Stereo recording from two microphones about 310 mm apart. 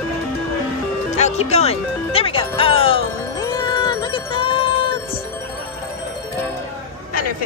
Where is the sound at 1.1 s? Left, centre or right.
Left.